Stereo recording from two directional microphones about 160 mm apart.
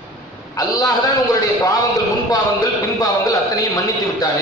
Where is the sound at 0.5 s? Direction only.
20° left (ahead or behind).